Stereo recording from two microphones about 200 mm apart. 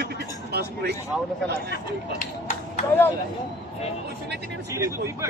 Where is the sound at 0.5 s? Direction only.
55° right (ahead or behind).